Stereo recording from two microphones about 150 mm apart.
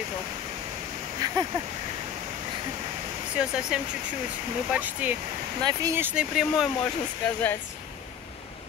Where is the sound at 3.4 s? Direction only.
5° right (ahead or behind).